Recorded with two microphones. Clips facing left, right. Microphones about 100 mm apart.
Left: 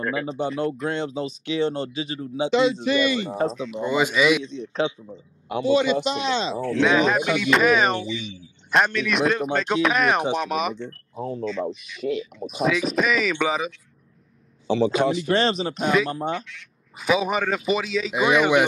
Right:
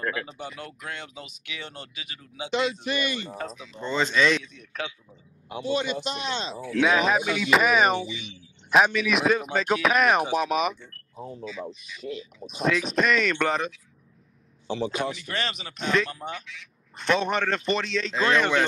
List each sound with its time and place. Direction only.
0.3 s a man's voice: 30° left (ahead or behind)
3.7 s speech: 10° left (ahead or behind)
4.5 s a man's voice: 25° left (ahead or behind)
5.5 s a man's voice: 90° left
6.8 s a man's voice: 5° right (ahead or behind)
11.1 s speech: 80° left
12.4 s a man's voice: 5° left (ahead or behind)
14.7 s a man's voice: 90° left
15.1 s speech: 30° left (ahead or behind)
15.8 s a man's voice: 5° left (ahead or behind)
16.1 s speech: 35° left (ahead or behind)
16.4 s a man's voice: centre (ahead or behind)